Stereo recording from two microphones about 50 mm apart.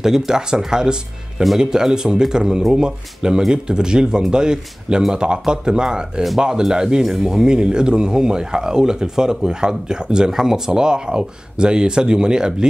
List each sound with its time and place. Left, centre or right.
0.0 s speech: centre